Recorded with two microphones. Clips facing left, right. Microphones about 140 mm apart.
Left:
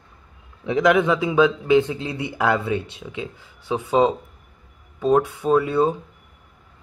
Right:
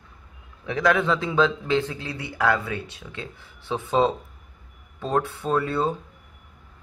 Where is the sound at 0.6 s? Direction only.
20° left (ahead or behind).